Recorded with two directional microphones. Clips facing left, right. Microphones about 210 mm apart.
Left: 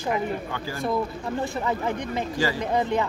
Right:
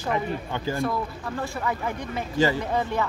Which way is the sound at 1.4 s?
20° left (ahead or behind).